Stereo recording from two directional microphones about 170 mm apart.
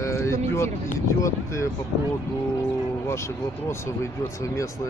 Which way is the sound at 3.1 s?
15° left (ahead or behind).